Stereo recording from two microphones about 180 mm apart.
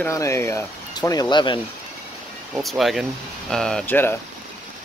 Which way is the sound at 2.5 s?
Centre (ahead or behind).